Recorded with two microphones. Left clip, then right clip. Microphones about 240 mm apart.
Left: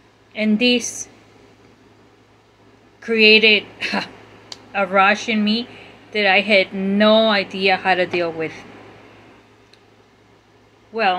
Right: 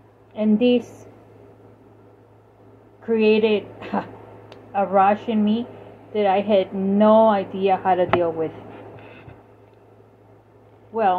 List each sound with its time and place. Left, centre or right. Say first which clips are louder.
0.4 s a woman's voice: left 1 dB; left
3.0 s a woman's voice: left 6 dB; left
10.9 s speech: left 1 dB; left